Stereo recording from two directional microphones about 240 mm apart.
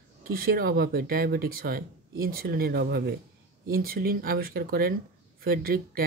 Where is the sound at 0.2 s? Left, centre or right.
Right.